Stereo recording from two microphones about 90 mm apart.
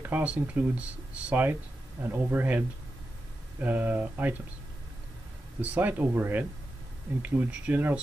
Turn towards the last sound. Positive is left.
turn(degrees=-10)  # may be behind; listen again after turning